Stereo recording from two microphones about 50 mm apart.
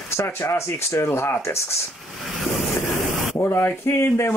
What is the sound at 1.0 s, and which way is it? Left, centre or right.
Speech, left.